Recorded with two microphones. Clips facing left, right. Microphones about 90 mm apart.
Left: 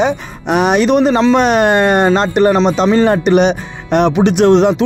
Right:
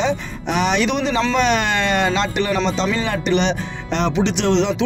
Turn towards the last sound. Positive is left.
turn(degrees=50)  # may be behind; listen again after turning